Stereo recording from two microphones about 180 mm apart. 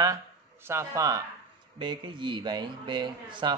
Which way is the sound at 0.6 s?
15° right (ahead or behind).